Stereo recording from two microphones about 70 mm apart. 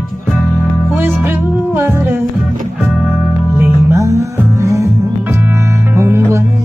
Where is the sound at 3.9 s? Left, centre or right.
Right.